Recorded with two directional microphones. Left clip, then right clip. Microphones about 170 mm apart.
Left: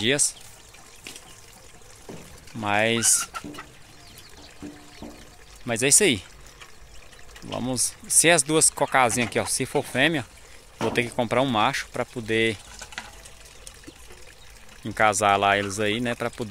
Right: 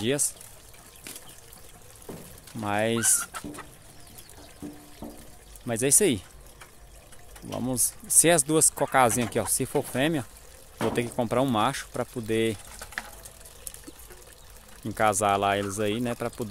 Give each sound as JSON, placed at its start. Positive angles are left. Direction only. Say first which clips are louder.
{"t": 0.0, "sound": "speech", "louder": "left 5 dB", "side_deg": 0}
{"t": 2.6, "sound": "speech", "louder": "left 4 dB", "side_deg": 0}
{"t": 3.2, "sound": "speech", "louder": "left 4 dB", "side_deg": 15}
{"t": 5.0, "sound": "pour", "louder": "even", "side_deg": 0}
{"t": 5.7, "sound": "speech", "louder": "left 4 dB", "side_deg": 0}
{"t": 7.4, "sound": "speech", "louder": "left 3 dB", "side_deg": 0}
{"t": 14.9, "sound": "speech", "louder": "left 4 dB", "side_deg": -5}